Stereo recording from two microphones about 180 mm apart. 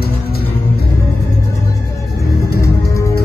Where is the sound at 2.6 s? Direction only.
15° left (ahead or behind).